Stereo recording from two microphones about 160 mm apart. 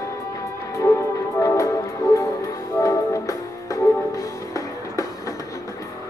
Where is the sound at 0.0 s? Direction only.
20° left (ahead or behind).